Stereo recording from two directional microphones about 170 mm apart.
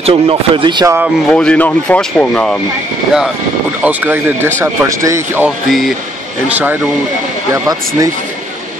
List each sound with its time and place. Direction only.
0.0 s speech: 30° right (ahead or behind)
1.3 s speech: 5° left (ahead or behind)
3.8 s speech: 10° right (ahead or behind)
5.7 s speech: centre (ahead or behind)
7.5 s speech: 20° right (ahead or behind)